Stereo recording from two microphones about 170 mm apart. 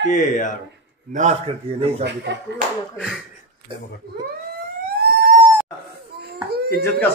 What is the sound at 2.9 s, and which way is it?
Speech, centre (ahead or behind).